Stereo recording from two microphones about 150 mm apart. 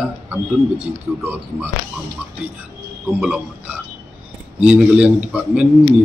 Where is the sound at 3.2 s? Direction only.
10° right (ahead or behind).